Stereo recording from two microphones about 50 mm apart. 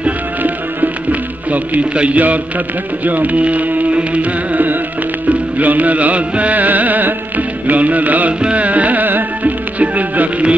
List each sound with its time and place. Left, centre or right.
1.5 s speech: right
5.3 s music: right